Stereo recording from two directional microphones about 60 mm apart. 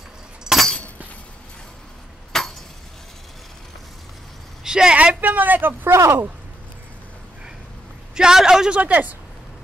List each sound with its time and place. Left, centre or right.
0.4 s a sound: centre
2.3 s a sound: centre
4.6 s a woman's voice: centre
4.9 s speech: right
8.1 s a man's voice: centre
8.7 s speech: right